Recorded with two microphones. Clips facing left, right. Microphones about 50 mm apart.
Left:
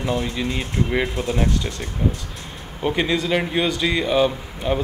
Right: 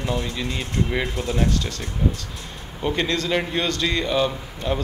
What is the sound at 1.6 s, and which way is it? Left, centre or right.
Speech, centre.